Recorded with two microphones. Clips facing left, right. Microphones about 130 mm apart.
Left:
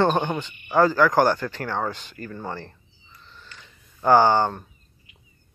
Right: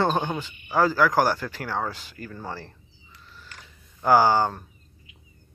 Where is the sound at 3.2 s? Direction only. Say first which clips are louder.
Even; 5° right (ahead or behind).